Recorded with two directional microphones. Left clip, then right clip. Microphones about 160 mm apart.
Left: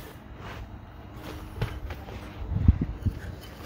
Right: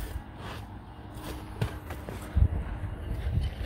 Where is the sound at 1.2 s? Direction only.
90° right.